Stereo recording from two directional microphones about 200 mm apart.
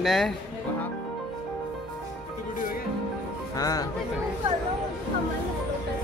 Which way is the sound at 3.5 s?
20° left (ahead or behind).